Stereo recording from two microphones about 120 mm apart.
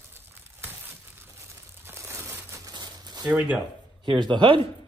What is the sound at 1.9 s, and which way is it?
Crumpling, 20° right (ahead or behind).